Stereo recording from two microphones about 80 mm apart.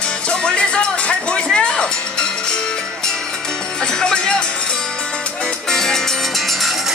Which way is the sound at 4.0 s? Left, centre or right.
Centre.